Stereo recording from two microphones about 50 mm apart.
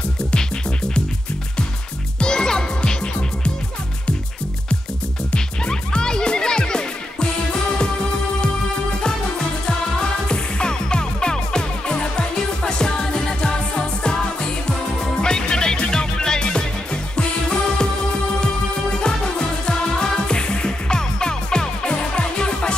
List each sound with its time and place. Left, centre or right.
0.3 s music: centre
2.1 s music: centre
5.3 s music: centre
9.7 s music: centre